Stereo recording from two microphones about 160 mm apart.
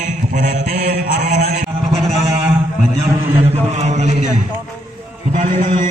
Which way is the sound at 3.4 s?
40° right (ahead or behind).